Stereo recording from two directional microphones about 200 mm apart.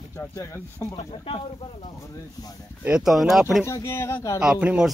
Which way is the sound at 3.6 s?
15° left (ahead or behind).